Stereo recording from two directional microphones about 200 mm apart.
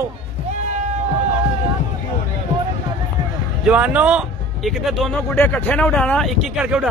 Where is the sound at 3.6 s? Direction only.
5° right (ahead or behind).